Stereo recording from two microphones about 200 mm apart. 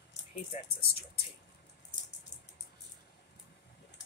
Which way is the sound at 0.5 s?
35° left (ahead or behind).